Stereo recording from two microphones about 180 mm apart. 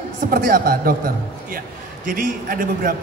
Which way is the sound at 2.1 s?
50° right (ahead or behind).